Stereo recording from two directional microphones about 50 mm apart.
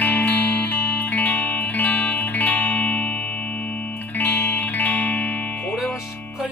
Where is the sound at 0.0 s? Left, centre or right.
Left.